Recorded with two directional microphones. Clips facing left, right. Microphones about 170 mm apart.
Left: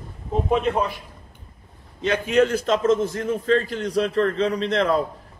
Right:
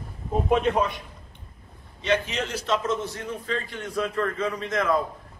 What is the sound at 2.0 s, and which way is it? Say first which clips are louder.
Speech: left 7 dB; 50° left (ahead or behind).